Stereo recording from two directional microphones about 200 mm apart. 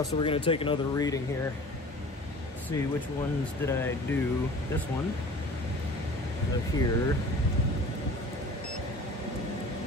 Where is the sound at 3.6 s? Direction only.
10° left (ahead or behind).